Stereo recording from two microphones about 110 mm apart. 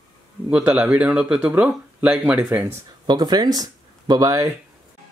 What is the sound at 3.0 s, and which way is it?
Speech, 40° right (ahead or behind).